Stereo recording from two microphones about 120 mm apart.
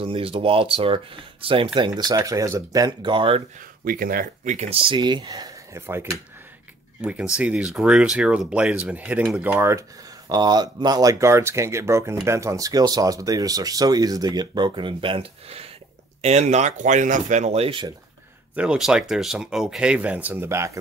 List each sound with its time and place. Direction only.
0.0 s speech: 50° right (ahead or behind)
1.8 s speech: 35° right (ahead or behind)
4.5 s speech: 60° right (ahead or behind); by 5.5 s 35° right (ahead or behind)
5.8 s speech: 20° right (ahead or behind)
7.0 s speech: 10° right (ahead or behind)
9.5 s speech: 20° right (ahead or behind); by 15.7 s 50° right (ahead or behind)
16.2 s speech: 65° right (ahead or behind)
17.6 s speech: 45° right (ahead or behind)
18.5 s speech: 10° right (ahead or behind); by 20.8 s 25° right (ahead or behind)